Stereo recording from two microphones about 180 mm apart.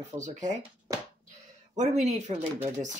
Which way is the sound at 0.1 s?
40° right (ahead or behind).